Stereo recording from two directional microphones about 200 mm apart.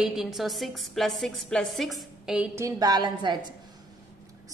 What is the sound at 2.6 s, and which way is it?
Speech, 15° right (ahead or behind).